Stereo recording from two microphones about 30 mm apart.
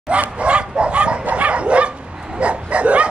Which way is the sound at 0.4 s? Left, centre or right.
Right.